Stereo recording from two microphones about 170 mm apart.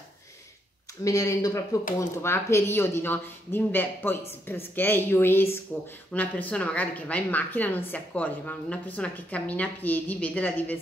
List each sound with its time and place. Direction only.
1.0 s a woman's voice: 20° left (ahead or behind)